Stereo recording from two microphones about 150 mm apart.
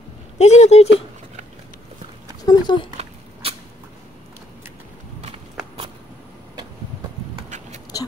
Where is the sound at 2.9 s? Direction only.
40° right (ahead or behind).